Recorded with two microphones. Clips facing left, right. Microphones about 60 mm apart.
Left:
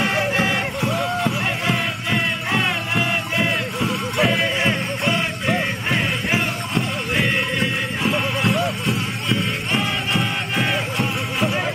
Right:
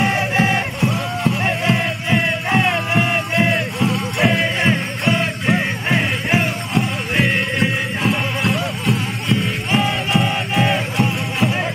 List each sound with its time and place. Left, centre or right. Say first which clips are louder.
0.0 s music: right 2 dB; right
0.7 s a sound: even; centre
2.0 s music: right 4 dB; right
3.3 s music: right 5 dB; centre
8.0 s music: even; centre